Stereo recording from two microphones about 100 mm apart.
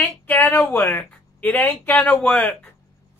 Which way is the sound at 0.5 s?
30° left (ahead or behind).